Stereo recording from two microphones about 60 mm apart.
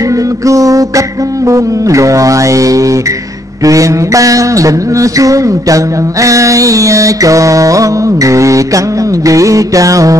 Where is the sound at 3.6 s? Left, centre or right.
Right.